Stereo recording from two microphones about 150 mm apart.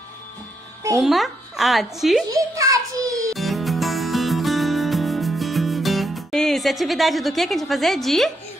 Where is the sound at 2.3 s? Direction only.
20° right (ahead or behind).